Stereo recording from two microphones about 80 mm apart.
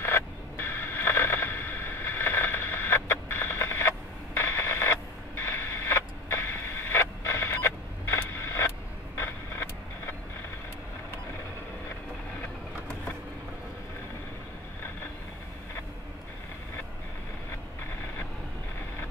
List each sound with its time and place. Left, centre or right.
0.0 s radio: left
9.1 s vehicle: left